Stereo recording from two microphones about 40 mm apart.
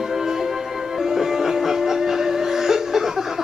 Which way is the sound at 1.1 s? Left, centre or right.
Centre.